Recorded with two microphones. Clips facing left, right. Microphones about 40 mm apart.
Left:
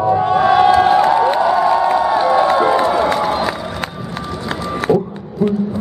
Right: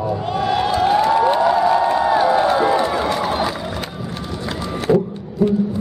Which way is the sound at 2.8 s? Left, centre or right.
Centre.